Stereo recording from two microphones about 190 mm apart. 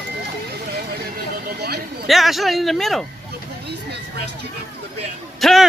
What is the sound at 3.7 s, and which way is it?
Speech, 60° right (ahead or behind).